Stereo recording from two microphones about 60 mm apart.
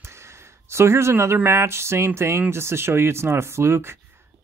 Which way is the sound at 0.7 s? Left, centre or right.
Right.